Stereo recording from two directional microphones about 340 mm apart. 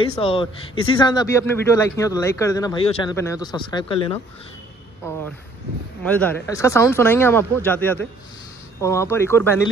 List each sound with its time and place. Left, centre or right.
0.0 s speech: centre
6.0 s speech: centre